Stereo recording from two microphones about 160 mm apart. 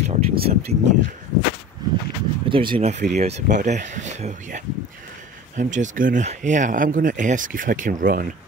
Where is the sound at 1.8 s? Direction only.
25° right (ahead or behind).